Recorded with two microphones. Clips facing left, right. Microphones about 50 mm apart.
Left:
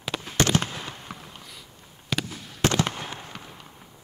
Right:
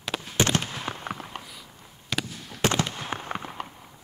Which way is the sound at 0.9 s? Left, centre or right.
Right.